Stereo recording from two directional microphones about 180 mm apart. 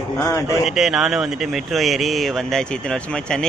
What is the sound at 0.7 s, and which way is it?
Speech, centre (ahead or behind).